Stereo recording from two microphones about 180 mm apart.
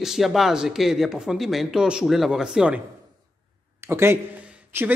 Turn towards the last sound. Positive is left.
turn(degrees=-10)  # may be behind; listen again after turning